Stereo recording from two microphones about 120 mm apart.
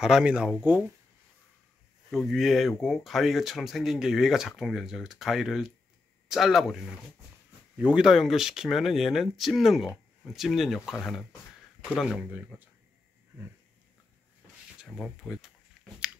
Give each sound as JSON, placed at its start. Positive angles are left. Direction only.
{"t": 0.0, "sound": "speech", "side_deg": -5}
{"t": 2.0, "sound": "speech", "side_deg": 0}
{"t": 12.0, "sound": "speech", "side_deg": -5}
{"t": 14.8, "sound": "speech", "side_deg": 0}
{"t": 15.8, "sound": "a sound", "side_deg": -5}